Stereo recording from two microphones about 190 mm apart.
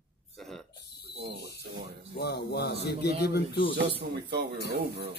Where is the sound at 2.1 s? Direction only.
60° left (ahead or behind).